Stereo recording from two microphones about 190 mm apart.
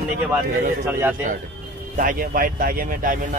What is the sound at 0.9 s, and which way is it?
Speech, 10° right (ahead or behind).